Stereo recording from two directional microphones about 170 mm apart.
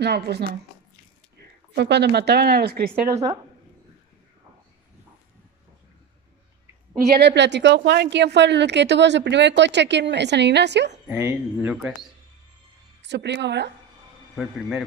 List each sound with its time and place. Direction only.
0.0 s speech: 75° right (ahead or behind)
1.8 s speech: 80° right
7.2 s a woman's voice: 85° right
11.1 s a man's voice: 10° right (ahead or behind)
13.0 s a woman's voice: 90° right
14.3 s a man's voice: 5° right (ahead or behind)